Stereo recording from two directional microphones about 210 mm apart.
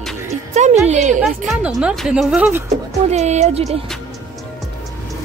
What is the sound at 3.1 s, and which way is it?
Speech, 30° right (ahead or behind).